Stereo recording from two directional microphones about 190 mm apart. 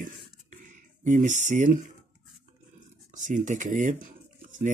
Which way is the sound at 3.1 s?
40° right (ahead or behind).